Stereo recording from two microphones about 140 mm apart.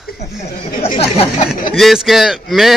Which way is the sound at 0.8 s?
45° left (ahead or behind).